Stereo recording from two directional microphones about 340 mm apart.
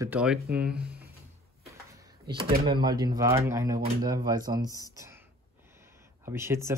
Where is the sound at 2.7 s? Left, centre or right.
Centre.